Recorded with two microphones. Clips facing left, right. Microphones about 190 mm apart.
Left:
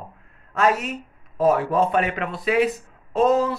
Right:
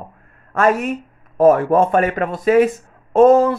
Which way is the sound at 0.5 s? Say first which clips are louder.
Right 5 dB; 50° right (ahead or behind).